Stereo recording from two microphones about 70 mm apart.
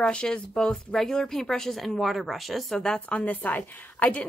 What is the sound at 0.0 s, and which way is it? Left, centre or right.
Speech, centre.